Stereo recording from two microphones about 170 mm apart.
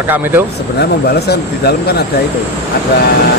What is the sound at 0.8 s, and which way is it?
Speech, 75° left (ahead or behind).